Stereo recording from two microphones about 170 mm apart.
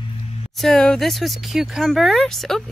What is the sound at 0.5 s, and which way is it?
Speech, centre (ahead or behind).